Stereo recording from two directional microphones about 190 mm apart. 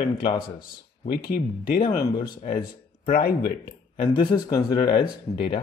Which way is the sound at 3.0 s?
50° left (ahead or behind).